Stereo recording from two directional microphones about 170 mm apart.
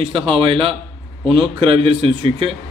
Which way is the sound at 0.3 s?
30° right (ahead or behind).